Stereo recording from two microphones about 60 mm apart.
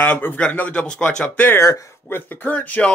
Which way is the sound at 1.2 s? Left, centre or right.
Left.